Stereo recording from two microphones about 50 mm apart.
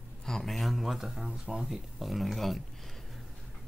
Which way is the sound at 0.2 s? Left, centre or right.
Centre.